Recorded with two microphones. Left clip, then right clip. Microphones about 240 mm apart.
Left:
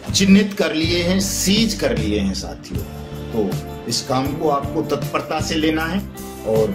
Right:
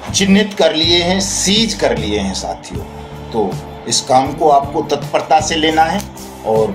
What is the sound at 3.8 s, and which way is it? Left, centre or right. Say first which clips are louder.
Speech: right 9 dB; centre.